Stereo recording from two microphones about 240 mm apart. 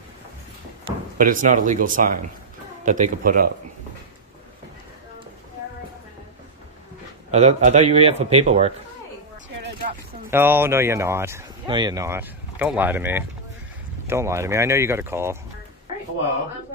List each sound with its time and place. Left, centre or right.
1.1 s speech: right
7.2 s speech: right
10.3 s speech: centre